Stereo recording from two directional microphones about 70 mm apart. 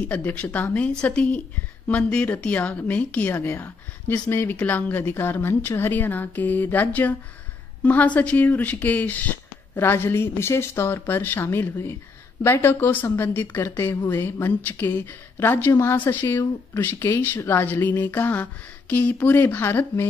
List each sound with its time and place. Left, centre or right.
0.1 s speech: left